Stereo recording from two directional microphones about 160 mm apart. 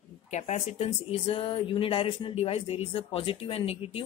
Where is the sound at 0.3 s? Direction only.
45° left (ahead or behind).